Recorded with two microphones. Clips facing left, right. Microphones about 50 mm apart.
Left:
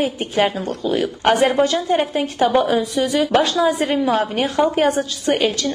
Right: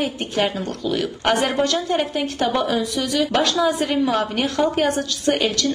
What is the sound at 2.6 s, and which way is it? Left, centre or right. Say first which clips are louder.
A woman's voice: left 4 dB; left.